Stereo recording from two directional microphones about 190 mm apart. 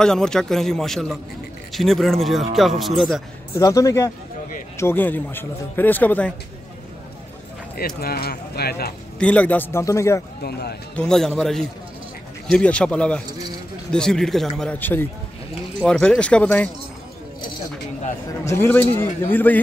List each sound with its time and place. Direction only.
0.0 s a man's voice: 5° left (ahead or behind)
3.5 s speech: 15° left (ahead or behind)
7.7 s speech: 50° left (ahead or behind)
9.2 s speech: 5° left (ahead or behind)
10.4 s speech: 55° left (ahead or behind)
11.0 s a man's voice: centre (ahead or behind)
18.5 s speech: 10° left (ahead or behind)